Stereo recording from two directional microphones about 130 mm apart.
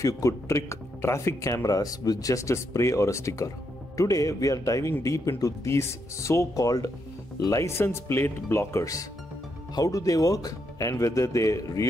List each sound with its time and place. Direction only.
0.0 s speech: 25° left (ahead or behind)